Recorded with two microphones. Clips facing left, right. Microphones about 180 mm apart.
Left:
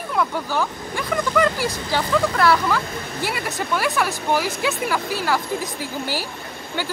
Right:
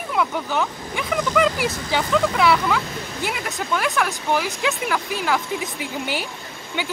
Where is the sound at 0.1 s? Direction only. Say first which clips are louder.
Even; centre (ahead or behind).